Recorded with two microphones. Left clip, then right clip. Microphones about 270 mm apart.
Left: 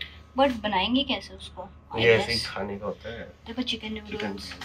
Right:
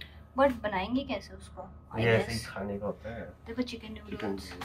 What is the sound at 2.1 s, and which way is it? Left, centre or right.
Speech, centre.